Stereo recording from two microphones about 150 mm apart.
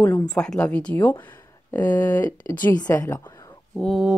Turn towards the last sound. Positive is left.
turn(degrees=0)  # may be behind; listen again after turning